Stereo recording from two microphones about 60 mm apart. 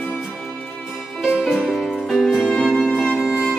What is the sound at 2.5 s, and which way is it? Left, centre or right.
Music, centre.